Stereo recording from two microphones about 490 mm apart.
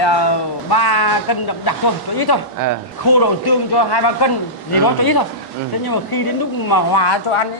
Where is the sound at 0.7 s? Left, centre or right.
Left.